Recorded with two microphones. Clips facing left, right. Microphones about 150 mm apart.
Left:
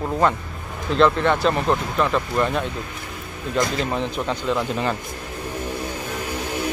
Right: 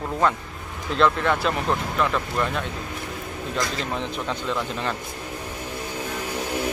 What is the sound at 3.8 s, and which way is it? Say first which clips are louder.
Speech: left 4 dB; centre (ahead or behind).